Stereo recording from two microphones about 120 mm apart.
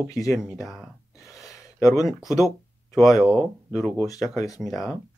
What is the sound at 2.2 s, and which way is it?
Speech, 30° left (ahead or behind).